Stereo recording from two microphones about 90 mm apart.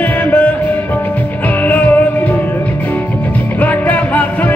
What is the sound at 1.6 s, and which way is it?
Music, 20° left (ahead or behind).